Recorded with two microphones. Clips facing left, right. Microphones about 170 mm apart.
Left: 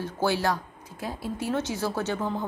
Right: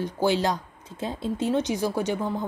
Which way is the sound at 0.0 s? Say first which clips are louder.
Right 2 dB; 15° right (ahead or behind).